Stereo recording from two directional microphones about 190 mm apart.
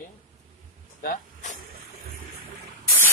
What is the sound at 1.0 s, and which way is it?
Speech, 45° left (ahead or behind).